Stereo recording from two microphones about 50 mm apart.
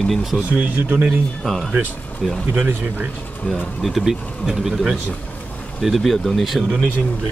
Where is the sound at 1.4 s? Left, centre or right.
Centre.